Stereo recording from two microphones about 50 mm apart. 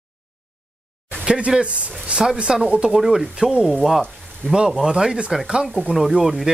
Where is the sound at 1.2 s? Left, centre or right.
Centre.